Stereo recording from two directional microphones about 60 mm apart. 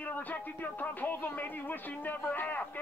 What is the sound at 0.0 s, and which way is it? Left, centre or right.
Speech, left.